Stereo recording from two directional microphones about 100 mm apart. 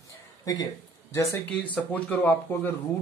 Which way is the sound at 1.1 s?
30° left (ahead or behind).